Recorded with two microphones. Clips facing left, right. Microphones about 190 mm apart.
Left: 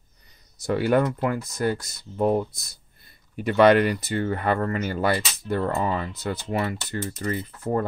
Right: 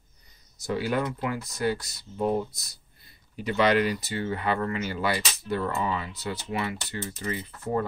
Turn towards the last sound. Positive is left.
turn(degrees=45)  # may be behind; listen again after turning